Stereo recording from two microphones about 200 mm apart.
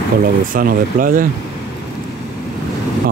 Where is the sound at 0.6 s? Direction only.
45° right (ahead or behind).